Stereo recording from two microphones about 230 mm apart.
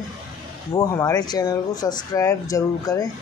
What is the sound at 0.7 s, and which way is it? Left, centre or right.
Speech, centre.